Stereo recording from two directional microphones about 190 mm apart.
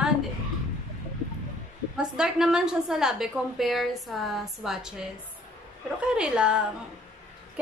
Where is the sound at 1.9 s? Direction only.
5° right (ahead or behind).